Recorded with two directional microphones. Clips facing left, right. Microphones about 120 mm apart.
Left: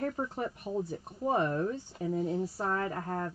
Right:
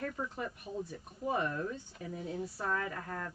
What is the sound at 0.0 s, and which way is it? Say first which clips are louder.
Speech: left 5 dB; 35° left (ahead or behind).